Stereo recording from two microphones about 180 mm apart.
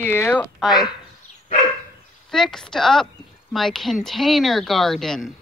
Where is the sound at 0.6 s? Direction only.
25° left (ahead or behind).